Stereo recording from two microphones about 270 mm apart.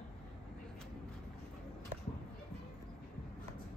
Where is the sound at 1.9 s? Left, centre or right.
Right.